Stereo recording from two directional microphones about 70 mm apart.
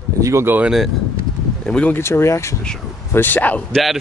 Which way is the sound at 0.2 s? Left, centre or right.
Right.